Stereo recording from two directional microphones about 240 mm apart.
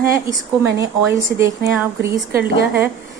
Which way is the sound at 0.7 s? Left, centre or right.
Centre.